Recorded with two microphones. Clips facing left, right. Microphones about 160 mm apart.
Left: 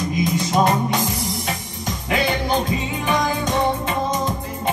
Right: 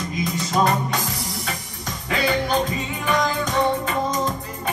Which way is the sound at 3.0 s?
25° left (ahead or behind).